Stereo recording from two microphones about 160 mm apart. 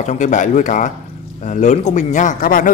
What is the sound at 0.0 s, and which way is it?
A man's voice, 50° left (ahead or behind).